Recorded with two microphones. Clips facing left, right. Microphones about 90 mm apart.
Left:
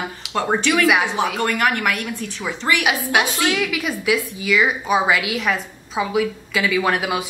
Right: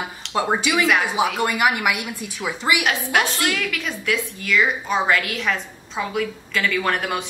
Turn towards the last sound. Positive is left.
turn(degrees=5)  # may be behind; listen again after turning